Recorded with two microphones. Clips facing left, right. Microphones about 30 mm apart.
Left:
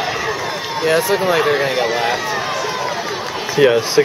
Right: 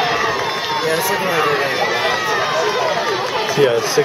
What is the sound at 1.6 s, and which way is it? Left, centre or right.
Run, centre.